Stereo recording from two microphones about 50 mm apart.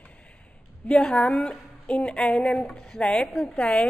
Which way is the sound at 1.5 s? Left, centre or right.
Left.